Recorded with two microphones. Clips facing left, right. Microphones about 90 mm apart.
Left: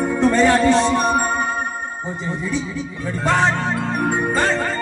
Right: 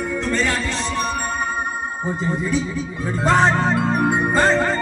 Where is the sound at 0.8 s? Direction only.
35° left (ahead or behind).